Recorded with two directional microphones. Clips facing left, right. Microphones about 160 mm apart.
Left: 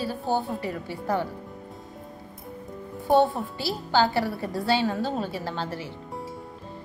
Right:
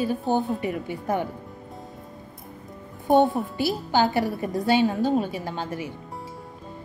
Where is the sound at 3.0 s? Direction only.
15° right (ahead or behind).